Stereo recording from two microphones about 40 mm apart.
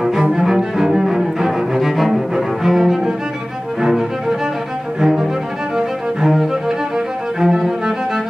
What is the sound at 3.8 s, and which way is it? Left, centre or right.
Music, centre.